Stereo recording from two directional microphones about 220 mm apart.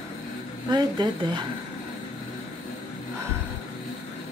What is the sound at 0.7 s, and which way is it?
Speech, 20° right (ahead or behind).